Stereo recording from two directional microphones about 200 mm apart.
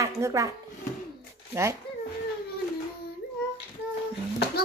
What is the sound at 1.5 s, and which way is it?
Speech, 15° right (ahead or behind).